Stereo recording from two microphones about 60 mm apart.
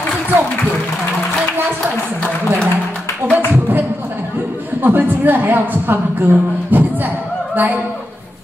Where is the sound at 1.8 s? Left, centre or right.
Right.